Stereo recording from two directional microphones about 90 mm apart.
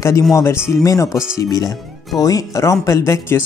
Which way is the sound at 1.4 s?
45° left (ahead or behind).